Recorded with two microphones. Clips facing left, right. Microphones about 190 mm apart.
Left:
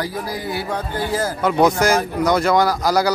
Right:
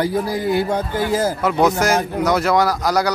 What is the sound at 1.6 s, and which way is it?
Speech, centre (ahead or behind).